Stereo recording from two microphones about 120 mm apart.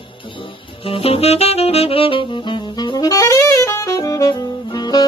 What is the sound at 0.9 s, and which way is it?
Saxophone, 55° left (ahead or behind).